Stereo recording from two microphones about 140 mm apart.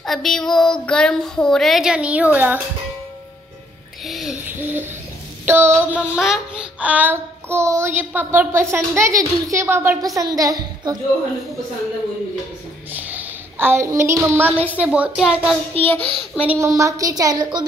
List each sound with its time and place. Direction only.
0.0 s speech: centre (ahead or behind)
4.0 s music: centre (ahead or behind)
4.5 s a sound: 15° right (ahead or behind)
5.5 s child singing: 15° right (ahead or behind)
5.9 s child singing: 5° right (ahead or behind)
8.7 s a woman's voice: 20° right (ahead or behind)
12.9 s a woman's voice: 10° right (ahead or behind)
15.8 s a child's voice: 10° left (ahead or behind)
16.5 s a woman's voice: 20° right (ahead or behind)